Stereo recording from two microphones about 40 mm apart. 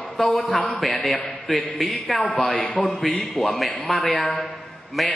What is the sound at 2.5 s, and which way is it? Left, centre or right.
Speech, left.